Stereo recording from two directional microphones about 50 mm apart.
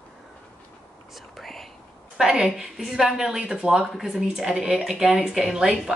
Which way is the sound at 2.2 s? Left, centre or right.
Centre.